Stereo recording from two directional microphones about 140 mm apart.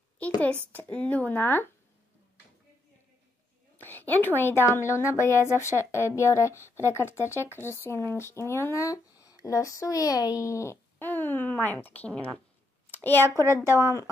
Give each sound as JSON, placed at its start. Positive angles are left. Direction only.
{"t": 0.4, "sound": "speech", "side_deg": 10}
{"t": 3.8, "sound": "a woman's voice", "side_deg": 15}
{"t": 13.3, "sound": "a woman's voice", "side_deg": -20}